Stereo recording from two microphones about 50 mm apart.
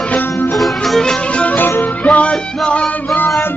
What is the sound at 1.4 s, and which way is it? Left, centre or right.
Music, left.